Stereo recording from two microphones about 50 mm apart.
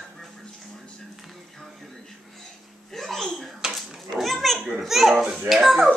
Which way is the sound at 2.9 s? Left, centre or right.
Centre.